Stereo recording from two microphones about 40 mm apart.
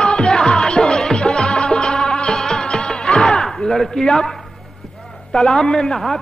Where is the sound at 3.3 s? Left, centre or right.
Centre.